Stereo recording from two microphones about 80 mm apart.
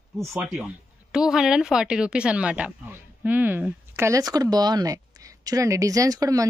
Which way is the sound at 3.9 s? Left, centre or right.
Right.